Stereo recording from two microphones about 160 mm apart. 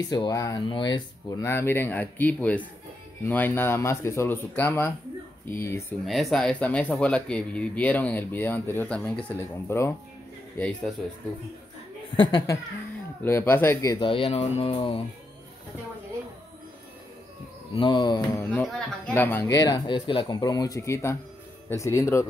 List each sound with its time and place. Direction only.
0.1 s speech: 25° left (ahead or behind)
1.4 s speech: 15° left (ahead or behind)
6.0 s speech: centre (ahead or behind)
10.6 s speech: 5° left (ahead or behind)
12.2 s speech: 25° left (ahead or behind)
13.2 s speech: 15° left (ahead or behind)
14.0 s speech: 35° left (ahead or behind)
17.7 s speech: 30° left (ahead or behind)
18.4 s speech: 10° left (ahead or behind)